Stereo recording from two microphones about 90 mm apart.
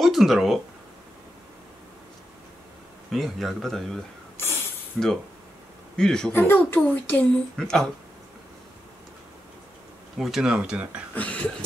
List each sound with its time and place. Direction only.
0.0 s speech: centre (ahead or behind)
3.1 s speech: centre (ahead or behind)
4.4 s snake: 25° left (ahead or behind)
5.0 s speech: 10° left (ahead or behind)
6.3 s speech: 25° left (ahead or behind)
7.5 s speech: 5° left (ahead or behind)
10.1 s speech: 5° right (ahead or behind)
11.1 s speech: 15° left (ahead or behind)